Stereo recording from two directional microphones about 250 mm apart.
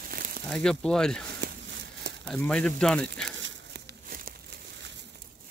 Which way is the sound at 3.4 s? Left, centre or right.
Right.